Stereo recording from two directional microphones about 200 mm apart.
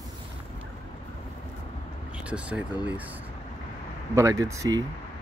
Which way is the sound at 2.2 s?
5° right (ahead or behind).